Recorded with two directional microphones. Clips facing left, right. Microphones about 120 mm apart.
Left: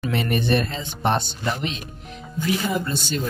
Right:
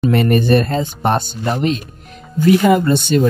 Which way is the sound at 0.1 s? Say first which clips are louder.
Right 7 dB; 50° right (ahead or behind).